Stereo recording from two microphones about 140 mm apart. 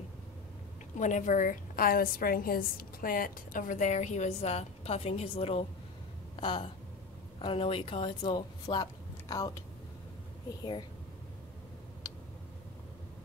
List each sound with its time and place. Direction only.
0.9 s a woman's voice: 60° left (ahead or behind); by 9.6 s 25° left (ahead or behind)